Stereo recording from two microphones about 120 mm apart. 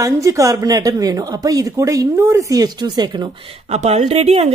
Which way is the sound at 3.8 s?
70° right (ahead or behind).